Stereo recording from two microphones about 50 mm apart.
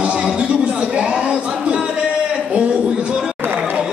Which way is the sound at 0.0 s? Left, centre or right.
Centre.